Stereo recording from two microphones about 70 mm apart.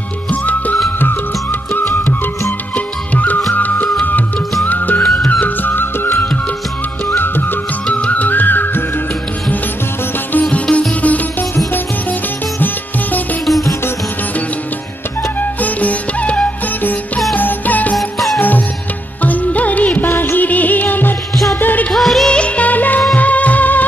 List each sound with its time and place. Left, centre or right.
0.3 s music: left
3.2 s music: left
10.5 s sitar: centre
12.5 s music: left
15.6 s music: left
17.9 s music: centre
19.2 s music: left
21.9 s music: centre
22.3 s music: centre